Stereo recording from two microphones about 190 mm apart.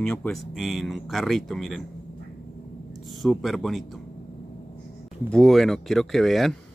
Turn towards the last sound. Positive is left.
turn(degrees=0)  # may be behind; listen again after turning